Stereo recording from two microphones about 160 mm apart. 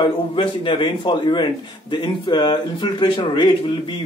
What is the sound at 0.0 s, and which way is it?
Speech, 30° left (ahead or behind).